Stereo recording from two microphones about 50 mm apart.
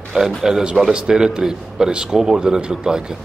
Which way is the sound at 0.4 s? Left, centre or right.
Centre.